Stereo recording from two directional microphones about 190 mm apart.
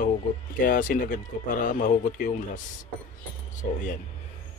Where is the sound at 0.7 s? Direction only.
45° left (ahead or behind).